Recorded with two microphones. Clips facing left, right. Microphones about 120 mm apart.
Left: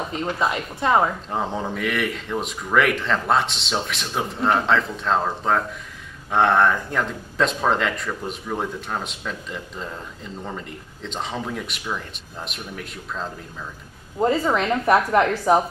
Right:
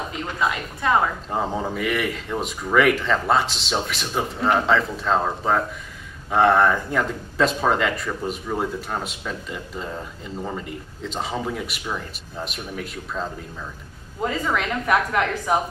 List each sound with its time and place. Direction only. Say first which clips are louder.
0.4 s a woman's voice: right 1 dB; 25° left (ahead or behind)
1.3 s speech: right 1 dB; centre (ahead or behind)
14.2 s a woman's voice: left 4 dB; 35° left (ahead or behind)